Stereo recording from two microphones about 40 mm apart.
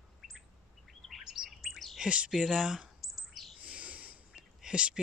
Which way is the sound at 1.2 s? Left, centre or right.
Centre.